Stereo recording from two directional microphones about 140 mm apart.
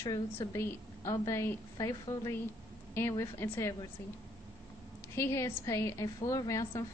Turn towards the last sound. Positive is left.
turn(degrees=20)  # may be behind; listen again after turning